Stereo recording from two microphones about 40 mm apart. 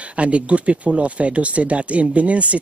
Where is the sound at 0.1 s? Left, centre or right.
Right.